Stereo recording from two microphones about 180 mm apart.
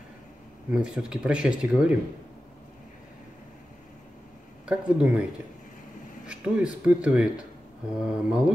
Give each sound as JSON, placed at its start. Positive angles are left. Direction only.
{"t": 0.7, "sound": "speech", "side_deg": -5}
{"t": 4.6, "sound": "speech", "side_deg": -5}
{"t": 6.2, "sound": "speech", "side_deg": -5}